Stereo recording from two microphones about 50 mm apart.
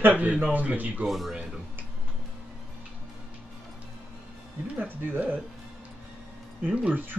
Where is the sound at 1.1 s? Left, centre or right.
Centre.